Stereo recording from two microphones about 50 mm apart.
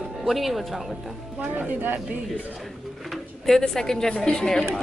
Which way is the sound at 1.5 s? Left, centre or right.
Right.